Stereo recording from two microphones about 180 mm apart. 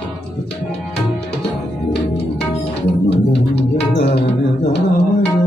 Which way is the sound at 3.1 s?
70° left (ahead or behind).